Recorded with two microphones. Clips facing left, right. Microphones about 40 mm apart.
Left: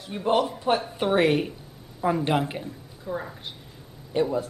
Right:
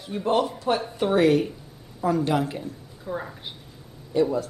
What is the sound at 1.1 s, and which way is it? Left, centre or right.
A woman's voice, left.